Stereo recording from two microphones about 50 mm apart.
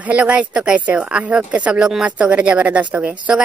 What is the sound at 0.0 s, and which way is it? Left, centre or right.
A woman's voice, right.